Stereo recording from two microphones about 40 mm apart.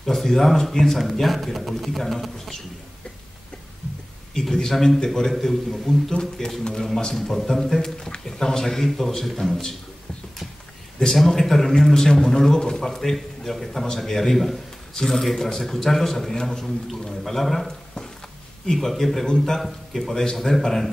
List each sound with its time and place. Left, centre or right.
0.0 s speech: centre
4.3 s a man's voice: centre
9.5 s a man's voice: centre
11.0 s a man's voice: centre